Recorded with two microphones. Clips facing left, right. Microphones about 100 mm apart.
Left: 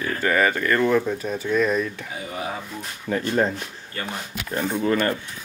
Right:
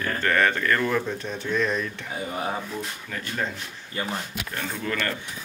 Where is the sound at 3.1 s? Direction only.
35° left (ahead or behind).